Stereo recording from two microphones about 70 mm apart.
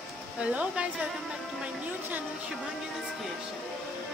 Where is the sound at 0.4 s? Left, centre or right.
Centre.